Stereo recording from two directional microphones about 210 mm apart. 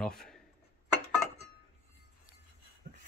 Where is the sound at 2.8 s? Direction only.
45° right (ahead or behind).